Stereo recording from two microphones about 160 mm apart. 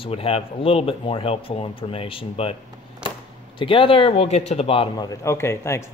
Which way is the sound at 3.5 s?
30° left (ahead or behind).